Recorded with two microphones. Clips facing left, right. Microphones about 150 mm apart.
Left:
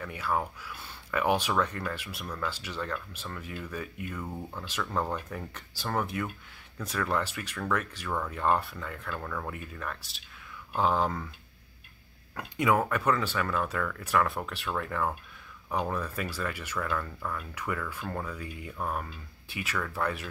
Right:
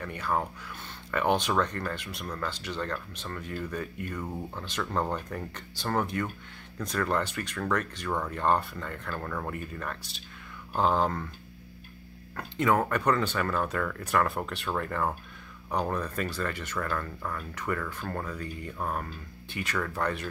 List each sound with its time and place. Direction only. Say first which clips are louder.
0.0 s speech: right 1 dB; 5° left (ahead or behind)
12.4 s speech: right 1 dB; 10° left (ahead or behind)